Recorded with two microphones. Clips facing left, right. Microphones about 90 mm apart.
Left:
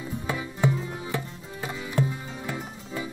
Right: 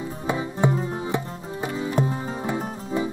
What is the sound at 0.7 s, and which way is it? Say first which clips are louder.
Music: right 3 dB; 35° right (ahead or behind).